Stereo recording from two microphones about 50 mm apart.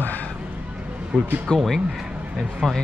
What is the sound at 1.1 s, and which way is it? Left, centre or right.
Speech, centre.